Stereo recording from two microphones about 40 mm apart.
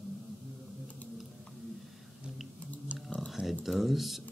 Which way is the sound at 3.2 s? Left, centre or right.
Centre.